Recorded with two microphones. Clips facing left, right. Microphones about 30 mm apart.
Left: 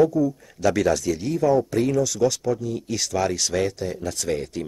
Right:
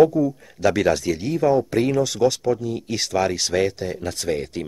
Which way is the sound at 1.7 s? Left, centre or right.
Right.